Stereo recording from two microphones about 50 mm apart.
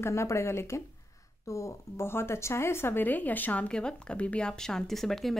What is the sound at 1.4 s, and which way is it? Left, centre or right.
Speech, left.